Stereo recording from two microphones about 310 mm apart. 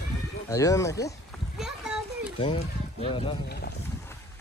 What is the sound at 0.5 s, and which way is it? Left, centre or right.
Speech, centre.